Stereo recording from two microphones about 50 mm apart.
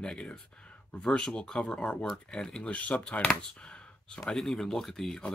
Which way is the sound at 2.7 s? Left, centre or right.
Left.